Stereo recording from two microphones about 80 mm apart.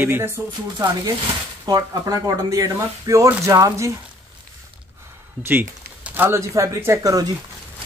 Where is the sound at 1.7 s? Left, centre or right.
Right.